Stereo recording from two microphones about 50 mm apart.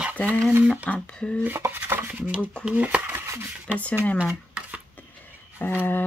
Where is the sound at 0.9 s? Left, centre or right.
Left.